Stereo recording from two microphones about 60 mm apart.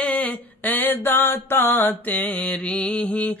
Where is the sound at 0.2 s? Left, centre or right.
Left.